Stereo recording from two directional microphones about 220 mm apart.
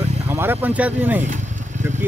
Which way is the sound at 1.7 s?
35° right (ahead or behind).